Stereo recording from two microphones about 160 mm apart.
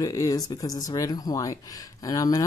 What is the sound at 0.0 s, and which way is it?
Speech, 20° left (ahead or behind).